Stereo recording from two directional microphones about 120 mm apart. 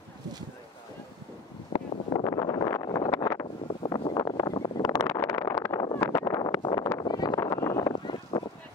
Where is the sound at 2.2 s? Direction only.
30° left (ahead or behind).